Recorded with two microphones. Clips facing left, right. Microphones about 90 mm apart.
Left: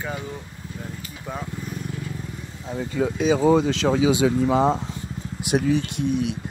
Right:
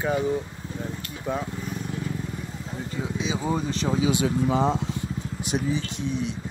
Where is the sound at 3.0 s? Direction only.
50° left (ahead or behind).